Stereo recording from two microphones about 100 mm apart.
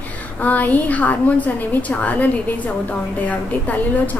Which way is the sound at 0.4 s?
15° left (ahead or behind).